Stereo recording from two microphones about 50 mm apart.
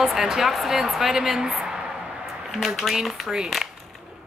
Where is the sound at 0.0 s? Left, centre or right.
Centre.